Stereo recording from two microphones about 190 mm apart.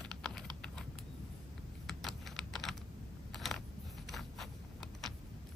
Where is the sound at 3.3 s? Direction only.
Centre (ahead or behind).